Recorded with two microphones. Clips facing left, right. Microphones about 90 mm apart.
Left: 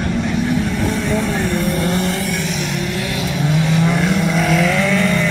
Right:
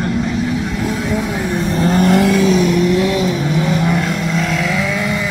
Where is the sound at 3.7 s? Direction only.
5° right (ahead or behind).